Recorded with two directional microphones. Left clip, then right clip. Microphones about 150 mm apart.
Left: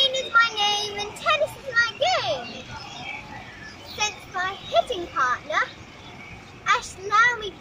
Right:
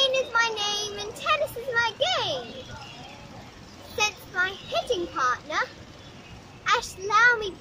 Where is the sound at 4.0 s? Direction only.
15° right (ahead or behind).